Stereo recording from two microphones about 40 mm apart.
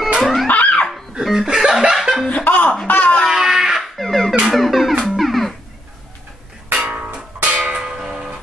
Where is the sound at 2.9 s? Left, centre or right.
Left.